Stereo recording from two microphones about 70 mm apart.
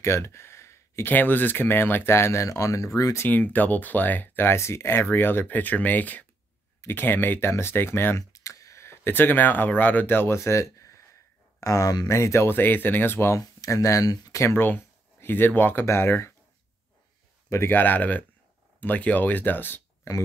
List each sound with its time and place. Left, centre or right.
0.0 s sigh: left
1.0 s speech: left
3.3 s speech: left
8.3 s speech: left
11.6 s speech: left
12.1 s speech: left
12.4 s speech: left
13.4 s speech: left
14.6 s speech: left
17.6 s speech: left